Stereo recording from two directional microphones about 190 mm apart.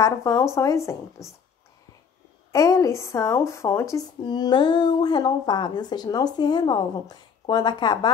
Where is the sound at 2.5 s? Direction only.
15° left (ahead or behind).